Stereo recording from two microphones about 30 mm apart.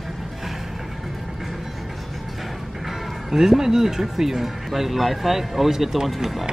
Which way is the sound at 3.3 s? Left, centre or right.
Centre.